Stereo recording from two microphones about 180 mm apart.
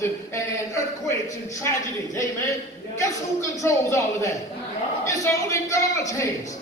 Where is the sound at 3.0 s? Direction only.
15° left (ahead or behind).